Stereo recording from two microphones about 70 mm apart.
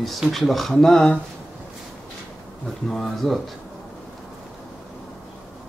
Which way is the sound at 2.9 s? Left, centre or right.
Centre.